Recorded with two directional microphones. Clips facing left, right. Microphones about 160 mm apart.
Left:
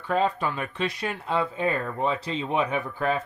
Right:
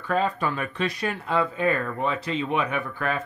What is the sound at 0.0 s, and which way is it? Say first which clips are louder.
Speech: even; 20° left (ahead or behind).